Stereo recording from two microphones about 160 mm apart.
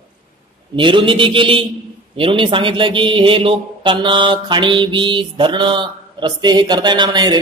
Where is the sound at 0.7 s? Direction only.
30° right (ahead or behind).